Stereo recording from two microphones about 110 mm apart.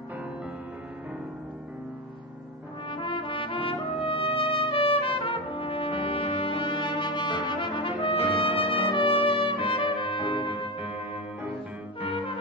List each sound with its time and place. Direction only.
2.9 s trumpet: 50° left (ahead or behind)
10.8 s music: 15° right (ahead or behind)